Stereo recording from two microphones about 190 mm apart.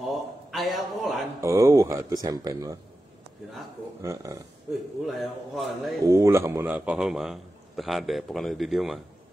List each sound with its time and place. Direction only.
0.0 s a sound: centre (ahead or behind)
1.4 s speech: 15° right (ahead or behind)
4.0 s speech: 15° right (ahead or behind)
5.0 s a man's voice: centre (ahead or behind)
6.0 s a man's voice: 15° right (ahead or behind)